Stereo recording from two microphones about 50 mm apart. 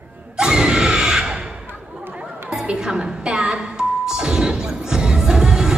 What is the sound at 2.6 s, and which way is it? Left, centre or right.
Music, centre.